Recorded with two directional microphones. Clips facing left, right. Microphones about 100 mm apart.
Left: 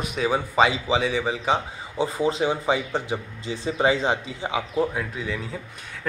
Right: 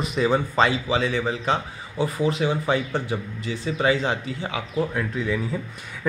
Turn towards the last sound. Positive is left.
turn(degrees=0)  # may be behind; listen again after turning